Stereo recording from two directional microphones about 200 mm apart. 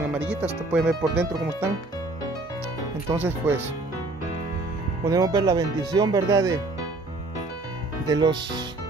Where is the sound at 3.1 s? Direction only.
10° right (ahead or behind).